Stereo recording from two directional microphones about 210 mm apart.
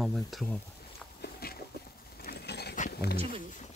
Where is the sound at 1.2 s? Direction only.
45° left (ahead or behind).